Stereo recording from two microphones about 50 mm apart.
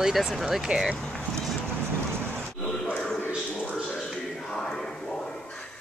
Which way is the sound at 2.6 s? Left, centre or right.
Centre.